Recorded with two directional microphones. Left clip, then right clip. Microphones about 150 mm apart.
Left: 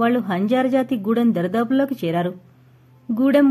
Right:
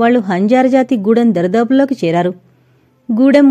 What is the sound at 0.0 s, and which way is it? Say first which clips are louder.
Speech: right 8 dB; 45° right (ahead or behind).